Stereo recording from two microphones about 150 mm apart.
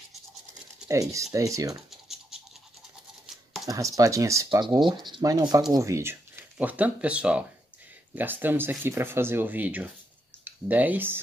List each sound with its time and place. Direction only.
0.8 s speech: 20° right (ahead or behind)
1.9 s scratch: centre (ahead or behind)
3.6 s speech: 20° right (ahead or behind)